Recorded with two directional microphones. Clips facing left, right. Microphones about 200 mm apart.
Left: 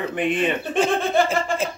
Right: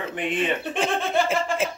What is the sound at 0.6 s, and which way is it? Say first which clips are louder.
Speech: left 4 dB; centre (ahead or behind).